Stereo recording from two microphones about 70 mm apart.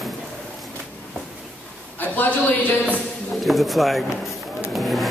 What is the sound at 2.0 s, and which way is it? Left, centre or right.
Speech, left.